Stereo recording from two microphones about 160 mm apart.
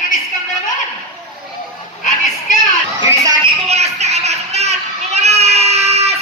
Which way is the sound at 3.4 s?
40° right (ahead or behind).